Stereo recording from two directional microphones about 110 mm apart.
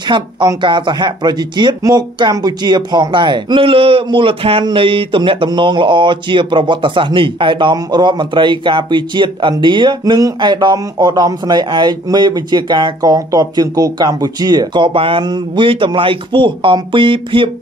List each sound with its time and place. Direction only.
0.0 s speech: 45° right (ahead or behind)